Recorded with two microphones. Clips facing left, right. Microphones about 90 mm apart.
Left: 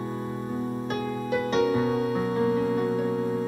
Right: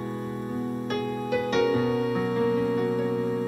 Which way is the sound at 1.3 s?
40° left (ahead or behind).